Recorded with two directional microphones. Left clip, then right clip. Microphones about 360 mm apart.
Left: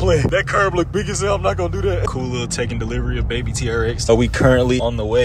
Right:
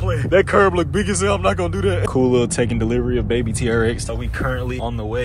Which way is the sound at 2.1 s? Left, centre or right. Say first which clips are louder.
Right 7 dB; centre.